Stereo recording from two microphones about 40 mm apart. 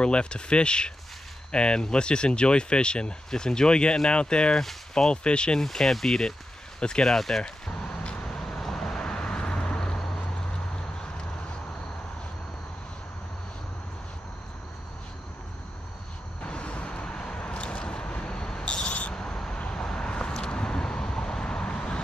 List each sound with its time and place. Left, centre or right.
0.0 s speech: left
4.6 s speech: centre
5.6 s speech: centre
7.2 s speech: centre
7.4 s vehicle: left
8.5 s vehicle: centre
16.4 s vehicle: left
19.1 s a sound: centre
19.7 s vehicle: centre